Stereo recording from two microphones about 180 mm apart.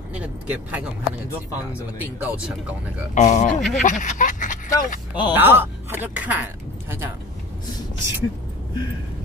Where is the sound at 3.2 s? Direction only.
40° left (ahead or behind).